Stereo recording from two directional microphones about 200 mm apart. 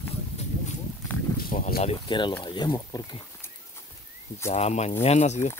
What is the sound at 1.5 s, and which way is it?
Speech, 45° left (ahead or behind).